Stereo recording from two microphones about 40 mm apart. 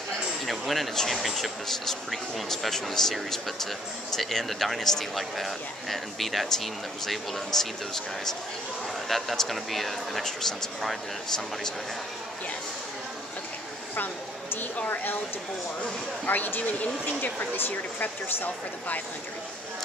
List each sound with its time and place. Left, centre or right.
0.5 s speech: centre
9.4 s speech: centre
10.2 s speech: centre
16.3 s speech: left